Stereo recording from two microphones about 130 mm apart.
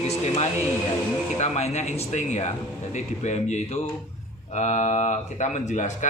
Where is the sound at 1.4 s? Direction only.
55° left (ahead or behind).